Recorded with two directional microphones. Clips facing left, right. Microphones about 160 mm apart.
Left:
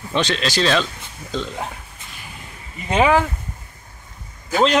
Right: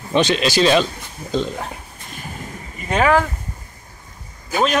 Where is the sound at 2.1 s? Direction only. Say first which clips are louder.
Right 8 dB; 45° right (ahead or behind).